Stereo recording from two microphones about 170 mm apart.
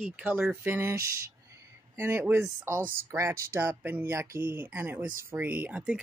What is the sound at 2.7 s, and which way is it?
Speech, 55° right (ahead or behind).